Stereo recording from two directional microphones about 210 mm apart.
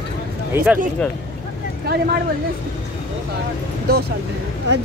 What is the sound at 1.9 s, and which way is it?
Speech, 50° right (ahead or behind).